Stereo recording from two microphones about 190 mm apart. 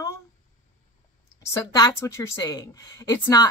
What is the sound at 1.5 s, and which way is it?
A woman's voice, 15° left (ahead or behind).